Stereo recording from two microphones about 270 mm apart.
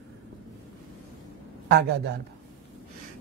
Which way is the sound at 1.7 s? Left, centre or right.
Right.